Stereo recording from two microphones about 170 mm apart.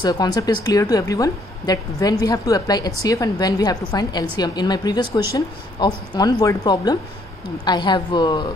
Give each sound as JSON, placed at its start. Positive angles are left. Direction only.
{"t": 0.0, "sound": "a woman's voice", "side_deg": 25}